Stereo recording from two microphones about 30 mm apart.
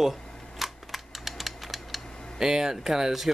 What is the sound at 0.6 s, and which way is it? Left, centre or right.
Typewriter, centre.